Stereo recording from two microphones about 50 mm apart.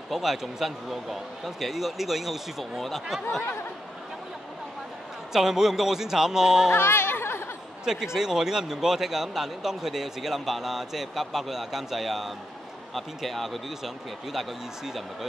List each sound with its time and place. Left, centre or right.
0.1 s speech: centre
5.3 s speech: centre
6.7 s a sound: left
7.8 s speech: centre